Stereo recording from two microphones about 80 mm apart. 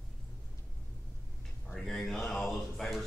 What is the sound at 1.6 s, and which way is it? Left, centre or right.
A man's voice, centre.